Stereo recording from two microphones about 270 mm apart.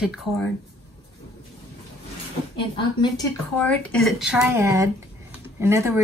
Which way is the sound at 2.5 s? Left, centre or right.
Centre.